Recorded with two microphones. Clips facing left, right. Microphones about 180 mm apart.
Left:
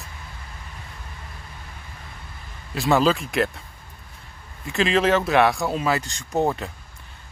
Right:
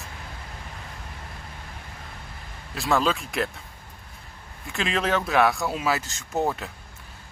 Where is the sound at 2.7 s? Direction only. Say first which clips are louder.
Left 4 dB; centre (ahead or behind).